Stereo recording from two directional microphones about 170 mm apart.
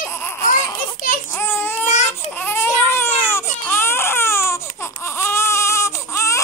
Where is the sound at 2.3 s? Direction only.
10° left (ahead or behind).